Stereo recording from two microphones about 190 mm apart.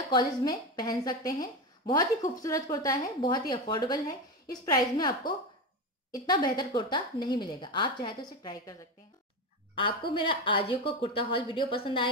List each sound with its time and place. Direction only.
0.1 s a woman's voice: 20° left (ahead or behind)